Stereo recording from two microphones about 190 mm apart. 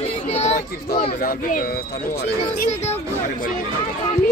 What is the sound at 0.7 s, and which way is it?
Speech, 55° left (ahead or behind).